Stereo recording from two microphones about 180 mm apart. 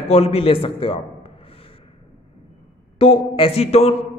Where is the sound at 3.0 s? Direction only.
30° left (ahead or behind).